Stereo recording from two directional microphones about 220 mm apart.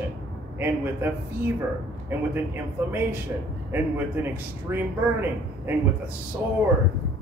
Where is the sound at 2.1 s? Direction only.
10° right (ahead or behind).